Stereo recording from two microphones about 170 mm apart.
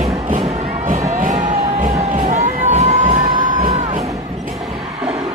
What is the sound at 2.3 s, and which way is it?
Crowd, 40° right (ahead or behind).